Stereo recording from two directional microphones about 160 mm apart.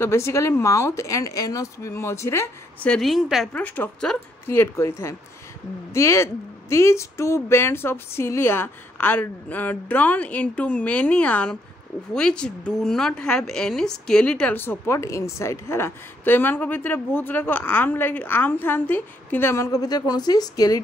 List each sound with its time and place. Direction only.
0.0 s a woman's voice: 15° left (ahead or behind)
2.9 s a woman's voice: centre (ahead or behind)
3.6 s a woman's voice: 10° left (ahead or behind)